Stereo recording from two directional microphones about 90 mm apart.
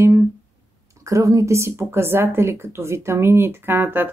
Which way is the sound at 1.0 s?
40° right (ahead or behind).